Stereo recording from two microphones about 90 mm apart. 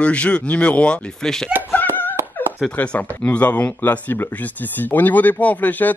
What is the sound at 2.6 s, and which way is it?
Speech, 15° left (ahead or behind).